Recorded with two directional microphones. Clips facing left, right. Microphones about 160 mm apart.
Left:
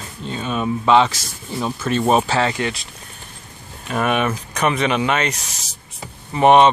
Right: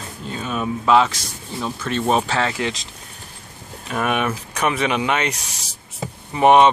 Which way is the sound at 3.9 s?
5° right (ahead or behind).